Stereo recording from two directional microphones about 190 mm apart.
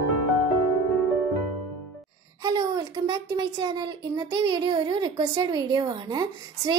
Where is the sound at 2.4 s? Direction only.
20° right (ahead or behind).